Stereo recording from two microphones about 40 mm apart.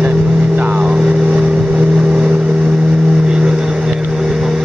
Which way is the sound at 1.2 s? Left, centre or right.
Right.